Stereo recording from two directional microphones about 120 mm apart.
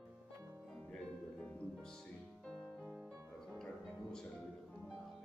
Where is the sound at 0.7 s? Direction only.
10° left (ahead or behind).